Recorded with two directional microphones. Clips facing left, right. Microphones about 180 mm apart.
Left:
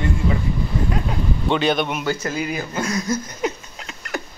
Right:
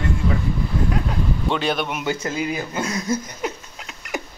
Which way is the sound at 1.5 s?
5° right (ahead or behind).